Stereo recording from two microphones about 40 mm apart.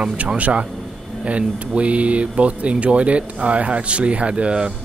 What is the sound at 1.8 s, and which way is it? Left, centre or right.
Speech, right.